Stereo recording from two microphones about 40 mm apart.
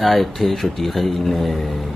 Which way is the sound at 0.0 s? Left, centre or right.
Centre.